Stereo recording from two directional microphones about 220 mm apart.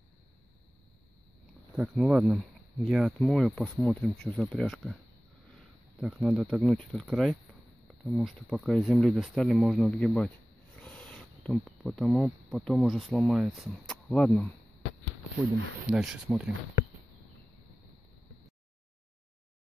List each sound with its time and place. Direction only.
1.8 s speech: 5° right (ahead or behind)
5.9 s speech: 5° right (ahead or behind)
15.4 s speech: 45° right (ahead or behind)
15.8 s speech: 5° right (ahead or behind)